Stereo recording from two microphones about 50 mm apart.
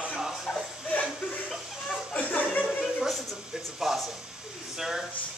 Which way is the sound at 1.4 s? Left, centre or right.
Centre.